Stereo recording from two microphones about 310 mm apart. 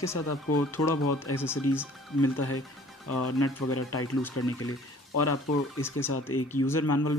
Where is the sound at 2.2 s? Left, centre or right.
Left.